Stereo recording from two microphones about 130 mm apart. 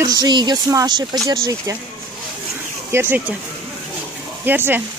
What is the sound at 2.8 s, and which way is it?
Speech, 20° right (ahead or behind).